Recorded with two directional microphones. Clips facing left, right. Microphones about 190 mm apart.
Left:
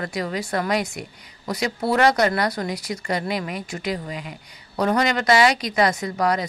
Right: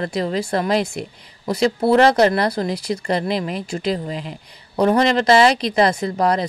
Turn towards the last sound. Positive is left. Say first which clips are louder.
# right 3 dB
turn(degrees=-30)  # may be behind; listen again after turning